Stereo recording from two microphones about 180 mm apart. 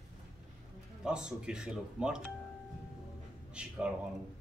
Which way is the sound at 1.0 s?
5° right (ahead or behind).